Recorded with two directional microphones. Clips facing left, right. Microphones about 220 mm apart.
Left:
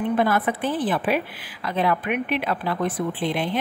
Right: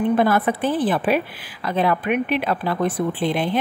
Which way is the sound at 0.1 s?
35° right (ahead or behind).